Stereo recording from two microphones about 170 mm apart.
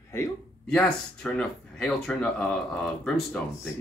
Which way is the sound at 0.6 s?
5° left (ahead or behind).